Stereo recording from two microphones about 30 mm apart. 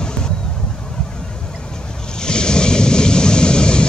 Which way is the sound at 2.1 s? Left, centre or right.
Left.